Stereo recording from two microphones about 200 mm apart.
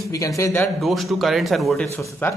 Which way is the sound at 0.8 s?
Centre (ahead or behind).